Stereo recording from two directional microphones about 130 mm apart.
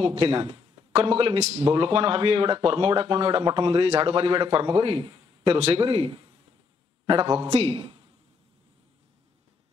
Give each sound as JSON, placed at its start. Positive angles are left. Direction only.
{"t": 0.0, "sound": "speech", "side_deg": -45}
{"t": 7.4, "sound": "speech", "side_deg": -55}